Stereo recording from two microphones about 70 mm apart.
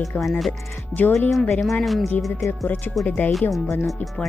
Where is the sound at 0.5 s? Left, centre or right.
Left.